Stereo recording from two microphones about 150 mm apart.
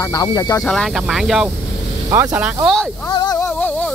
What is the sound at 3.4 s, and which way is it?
Humming, 10° left (ahead or behind).